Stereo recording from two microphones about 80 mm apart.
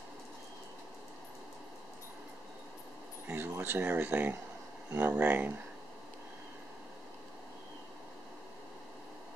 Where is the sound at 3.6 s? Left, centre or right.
Right.